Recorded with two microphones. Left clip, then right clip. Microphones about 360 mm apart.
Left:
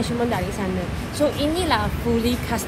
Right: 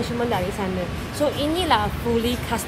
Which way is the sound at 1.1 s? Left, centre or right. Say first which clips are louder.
Left 1 dB; centre.